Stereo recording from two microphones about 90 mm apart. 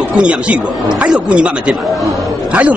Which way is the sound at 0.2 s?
15° right (ahead or behind).